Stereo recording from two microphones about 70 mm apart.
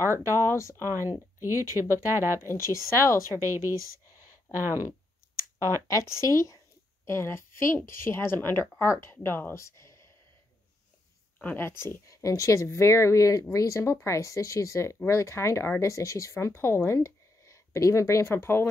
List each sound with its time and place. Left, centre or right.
0.7 s speech: right
2.4 s speech: left
3.3 s speech: right
5.9 s speech: left
7.1 s speech: left
9.6 s speech: left
11.5 s speech: left